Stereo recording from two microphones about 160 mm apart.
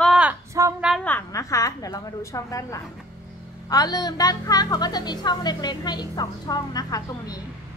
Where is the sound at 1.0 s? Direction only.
15° left (ahead or behind).